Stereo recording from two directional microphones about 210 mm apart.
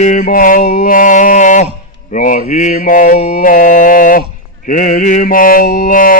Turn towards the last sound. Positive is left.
turn(degrees=40)  # may be behind; listen again after turning